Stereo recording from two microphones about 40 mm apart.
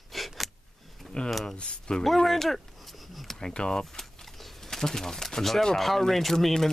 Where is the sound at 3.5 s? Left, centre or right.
Centre.